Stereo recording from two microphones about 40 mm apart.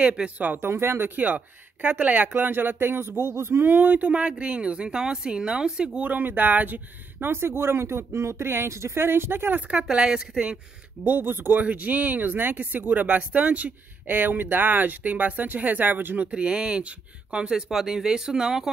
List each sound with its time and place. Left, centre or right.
0.0 s a woman's voice: right
0.6 s speech: right
1.1 s speech: right
2.3 s speech: right
3.7 s speech: right
4.0 s a woman's voice: right
6.0 s speech: right
7.2 s speech: right
9.7 s a woman's voice: centre
11.1 s speech: right
11.5 s speech: right
13.0 s speech: right
16.3 s a woman's voice: right; by 18.7 s centre